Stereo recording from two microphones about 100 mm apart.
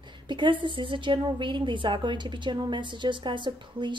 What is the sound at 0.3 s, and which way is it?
A woman's voice, 55° right (ahead or behind).